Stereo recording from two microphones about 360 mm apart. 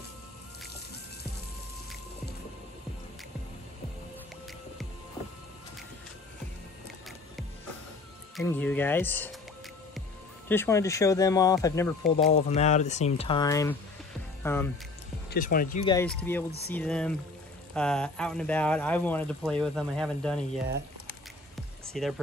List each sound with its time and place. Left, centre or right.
8.4 s speech: centre
10.5 s speech: centre
15.2 s speech: left; by 20.3 s centre
21.9 s speech: centre